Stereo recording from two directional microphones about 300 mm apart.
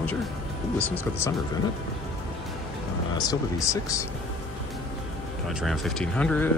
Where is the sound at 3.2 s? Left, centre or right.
Centre.